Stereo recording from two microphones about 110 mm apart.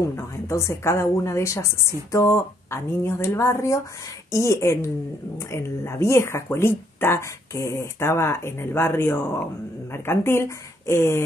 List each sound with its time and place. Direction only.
0.1 s speech: 25° left (ahead or behind)